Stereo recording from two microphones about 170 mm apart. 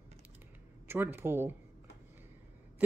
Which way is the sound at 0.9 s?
15° right (ahead or behind).